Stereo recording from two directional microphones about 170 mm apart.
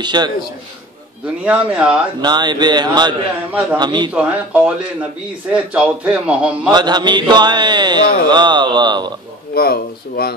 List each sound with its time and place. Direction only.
0.0 s a man's voice: 25° right (ahead or behind)
1.4 s a man's voice: 10° right (ahead or behind)
2.2 s a man's voice: 25° right (ahead or behind)
4.1 s a man's voice: 5° right (ahead or behind)
6.7 s a man's voice: 25° right (ahead or behind)
9.5 s speech: 65° left (ahead or behind)